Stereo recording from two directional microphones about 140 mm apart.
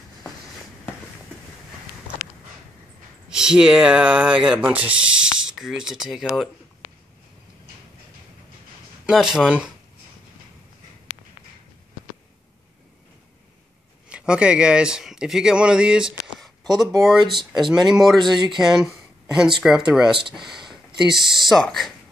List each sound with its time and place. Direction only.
3.3 s speech: 5° right (ahead or behind)
9.0 s speech: 5° right (ahead or behind)
14.0 s speech: 5° right (ahead or behind)